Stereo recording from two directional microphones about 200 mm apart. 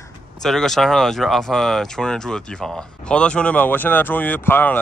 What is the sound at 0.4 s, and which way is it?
Speech, centre (ahead or behind).